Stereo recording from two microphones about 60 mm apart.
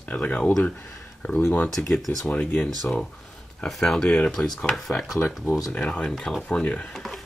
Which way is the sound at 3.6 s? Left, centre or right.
Centre.